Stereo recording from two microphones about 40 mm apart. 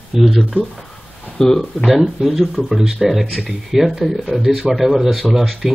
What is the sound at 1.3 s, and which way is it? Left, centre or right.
Speech, centre.